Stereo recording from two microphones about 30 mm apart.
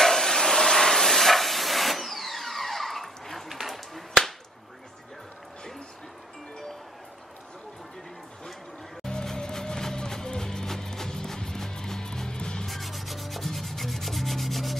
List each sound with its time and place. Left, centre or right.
0.0 s steam: centre
3.4 s a sound: centre
9.0 s music: centre
12.6 s rub: centre